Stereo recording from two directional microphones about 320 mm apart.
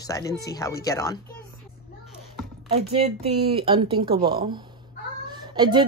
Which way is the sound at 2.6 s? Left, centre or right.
Centre.